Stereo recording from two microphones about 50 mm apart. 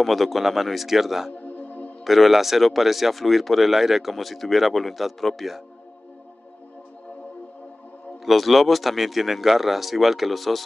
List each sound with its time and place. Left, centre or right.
0.0 s speech: centre
1.3 s music: left
2.0 s speech: centre
8.3 s speech: centre